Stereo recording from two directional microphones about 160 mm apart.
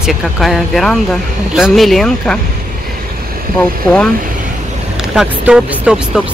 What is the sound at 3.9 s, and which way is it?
Speech, 5° left (ahead or behind).